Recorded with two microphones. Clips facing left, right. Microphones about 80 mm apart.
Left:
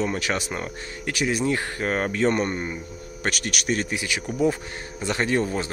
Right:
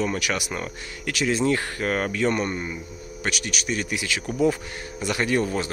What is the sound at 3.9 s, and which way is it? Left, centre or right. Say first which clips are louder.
Speech: even; left.